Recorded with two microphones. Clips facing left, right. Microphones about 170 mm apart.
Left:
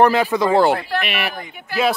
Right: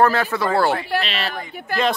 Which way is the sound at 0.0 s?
15° left (ahead or behind).